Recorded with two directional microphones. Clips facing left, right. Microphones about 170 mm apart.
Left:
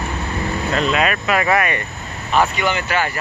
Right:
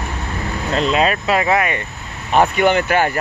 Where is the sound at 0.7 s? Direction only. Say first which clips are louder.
Right 3 dB; 30° right (ahead or behind).